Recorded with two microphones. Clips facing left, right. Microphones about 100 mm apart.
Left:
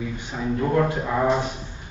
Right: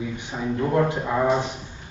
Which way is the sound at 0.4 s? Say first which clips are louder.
Left 1 dB; 5° right (ahead or behind).